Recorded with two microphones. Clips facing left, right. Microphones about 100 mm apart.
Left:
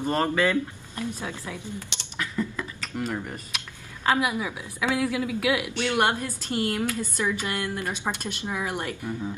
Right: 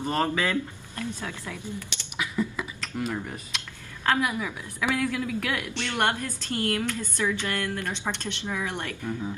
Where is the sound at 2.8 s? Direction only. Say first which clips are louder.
Left 1 dB; centre (ahead or behind).